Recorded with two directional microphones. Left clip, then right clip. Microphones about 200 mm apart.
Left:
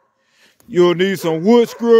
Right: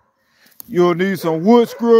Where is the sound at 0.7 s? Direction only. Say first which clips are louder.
Left 2 dB; 10° left (ahead or behind).